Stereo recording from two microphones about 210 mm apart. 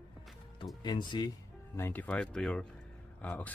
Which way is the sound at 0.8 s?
20° left (ahead or behind).